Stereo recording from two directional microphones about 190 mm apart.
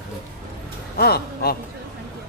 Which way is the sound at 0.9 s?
55° left (ahead or behind).